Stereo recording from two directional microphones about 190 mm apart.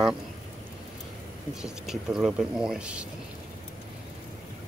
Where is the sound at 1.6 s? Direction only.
5° right (ahead or behind).